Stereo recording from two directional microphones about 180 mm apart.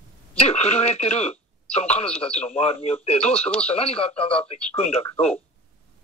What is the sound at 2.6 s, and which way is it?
Speech, 35° left (ahead or behind).